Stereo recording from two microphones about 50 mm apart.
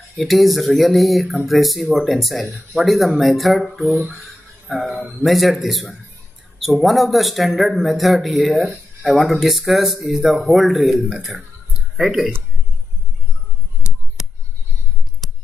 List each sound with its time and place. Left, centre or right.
0.2 s a man's voice: centre
12.0 s a man's voice: centre
13.9 s finger snapping: centre